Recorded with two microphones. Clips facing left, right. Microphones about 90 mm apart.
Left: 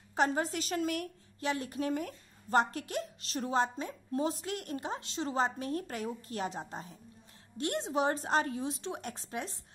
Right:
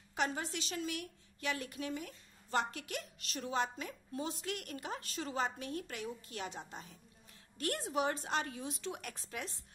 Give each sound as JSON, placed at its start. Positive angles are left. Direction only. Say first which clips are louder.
{"t": 0.1, "sound": "a woman's voice", "louder": "left 7 dB", "side_deg": 40}
{"t": 1.4, "sound": "a woman's voice", "louder": "left 6 dB", "side_deg": 30}
{"t": 7.5, "sound": "a woman's voice", "louder": "left 4 dB", "side_deg": 25}